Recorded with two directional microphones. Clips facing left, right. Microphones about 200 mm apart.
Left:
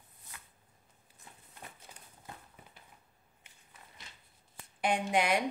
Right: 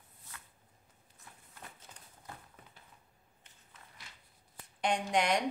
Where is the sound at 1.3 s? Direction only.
20° left (ahead or behind).